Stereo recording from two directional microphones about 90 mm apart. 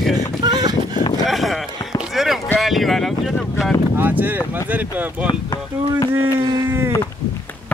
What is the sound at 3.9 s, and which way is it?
Speech, 20° right (ahead or behind).